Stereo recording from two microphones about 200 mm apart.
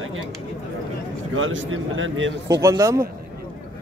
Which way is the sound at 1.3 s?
75° right (ahead or behind).